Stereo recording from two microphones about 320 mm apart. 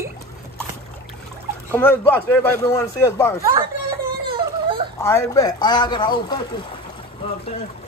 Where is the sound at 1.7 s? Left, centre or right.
Centre.